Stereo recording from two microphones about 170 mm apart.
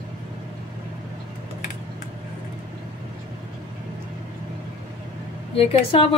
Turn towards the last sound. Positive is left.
turn(degrees=35)  # may be behind; listen again after turning